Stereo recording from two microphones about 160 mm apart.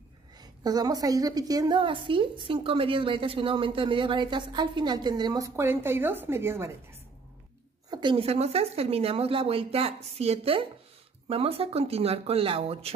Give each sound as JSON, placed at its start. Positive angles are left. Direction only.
{"t": 0.4, "sound": "a woman's voice", "side_deg": -25}
{"t": 7.9, "sound": "speech", "side_deg": -30}